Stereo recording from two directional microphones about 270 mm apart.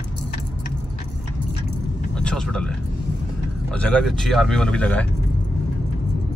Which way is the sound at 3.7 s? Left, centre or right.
Centre.